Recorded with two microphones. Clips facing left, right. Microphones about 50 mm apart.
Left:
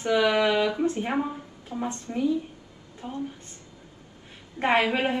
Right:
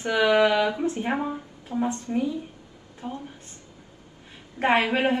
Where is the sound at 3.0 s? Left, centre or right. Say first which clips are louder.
Right 2 dB; centre.